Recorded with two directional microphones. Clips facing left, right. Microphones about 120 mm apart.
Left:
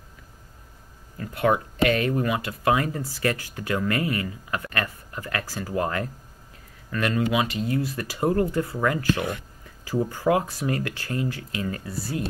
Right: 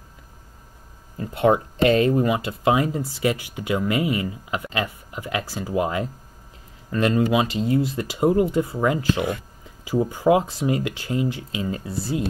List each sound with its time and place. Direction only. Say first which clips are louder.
1.1 s speech: right 4 dB; 25° right (ahead or behind)